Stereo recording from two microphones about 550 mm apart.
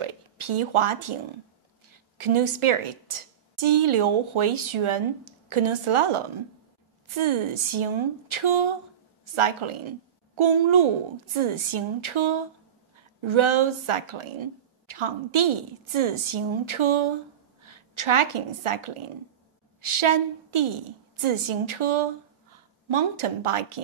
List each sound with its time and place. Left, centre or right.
0.0 s a woman's voice: right